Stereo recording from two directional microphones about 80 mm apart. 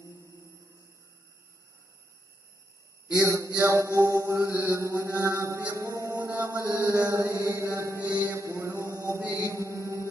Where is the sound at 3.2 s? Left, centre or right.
Right.